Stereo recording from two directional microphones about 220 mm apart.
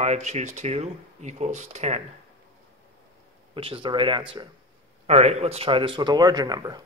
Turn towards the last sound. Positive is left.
turn(degrees=-15)  # may be behind; listen again after turning